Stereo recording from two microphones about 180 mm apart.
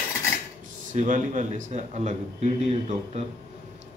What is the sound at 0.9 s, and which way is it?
A man's voice, 45° right (ahead or behind).